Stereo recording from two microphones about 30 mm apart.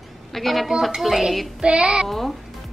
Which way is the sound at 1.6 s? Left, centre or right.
Right.